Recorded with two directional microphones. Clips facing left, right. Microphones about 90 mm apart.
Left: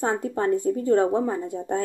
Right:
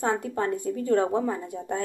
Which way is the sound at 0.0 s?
30° left (ahead or behind).